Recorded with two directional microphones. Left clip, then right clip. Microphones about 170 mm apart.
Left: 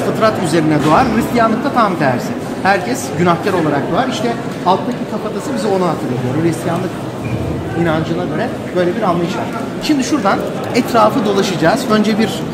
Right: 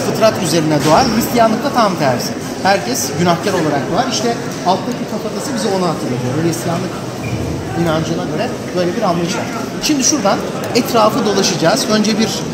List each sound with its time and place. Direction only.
0.2 s speech: 15° right (ahead or behind)
9.8 s a woman's voice: 20° right (ahead or behind); by 12.3 s 5° right (ahead or behind)